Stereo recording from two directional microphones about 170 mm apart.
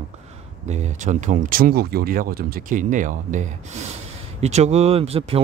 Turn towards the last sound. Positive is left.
turn(degrees=-35)  # may be behind; listen again after turning